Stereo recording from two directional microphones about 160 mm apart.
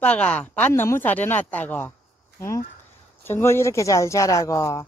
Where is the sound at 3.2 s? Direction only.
15° left (ahead or behind).